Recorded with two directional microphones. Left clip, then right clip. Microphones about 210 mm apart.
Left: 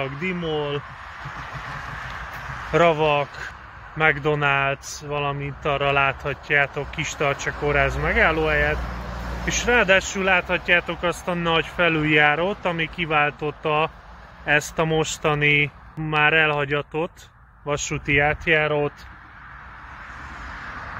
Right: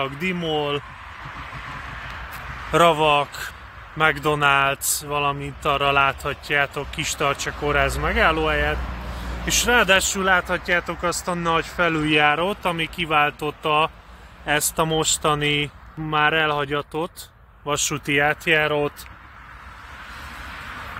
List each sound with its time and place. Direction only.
0.0 s speech: 35° right (ahead or behind)
1.2 s vehicle: 50° left (ahead or behind)
2.7 s speech: 25° right (ahead or behind)
8.8 s vehicle: 50° left (ahead or behind)
9.6 s speech: 20° right (ahead or behind)